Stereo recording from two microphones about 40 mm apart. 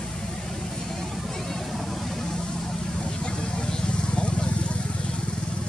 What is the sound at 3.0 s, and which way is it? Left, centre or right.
Vehicle, left.